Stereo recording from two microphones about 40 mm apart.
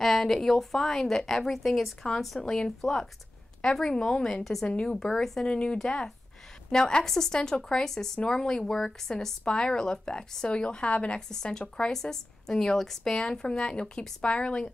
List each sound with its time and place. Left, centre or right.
0.0 s a woman's voice: centre
5.5 s speech: left
5.8 s a woman's voice: centre; by 11.1 s left
11.1 s a woman's voice: centre